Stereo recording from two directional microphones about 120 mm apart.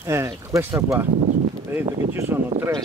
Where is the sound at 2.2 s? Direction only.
20° right (ahead or behind).